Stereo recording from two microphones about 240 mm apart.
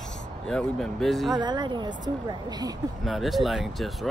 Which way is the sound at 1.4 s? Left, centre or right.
Centre.